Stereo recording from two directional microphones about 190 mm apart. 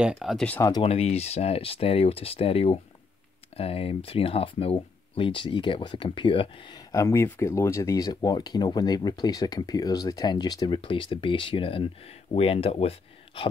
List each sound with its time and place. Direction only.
0.0 s speech: centre (ahead or behind)
0.6 s speech: 20° left (ahead or behind)
0.8 s speech: 35° left (ahead or behind)